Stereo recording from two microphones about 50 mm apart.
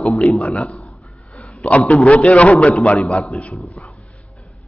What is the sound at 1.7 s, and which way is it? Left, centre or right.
A man's voice, left.